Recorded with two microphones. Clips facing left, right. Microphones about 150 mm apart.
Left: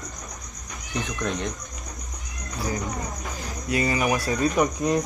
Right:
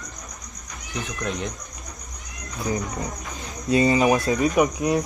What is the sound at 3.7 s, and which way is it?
Speech, 25° right (ahead or behind).